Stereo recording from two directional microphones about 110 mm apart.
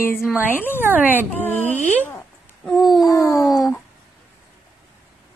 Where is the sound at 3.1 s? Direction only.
25° left (ahead or behind).